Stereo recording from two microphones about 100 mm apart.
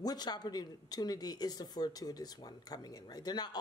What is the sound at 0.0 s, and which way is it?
Speech, 40° left (ahead or behind).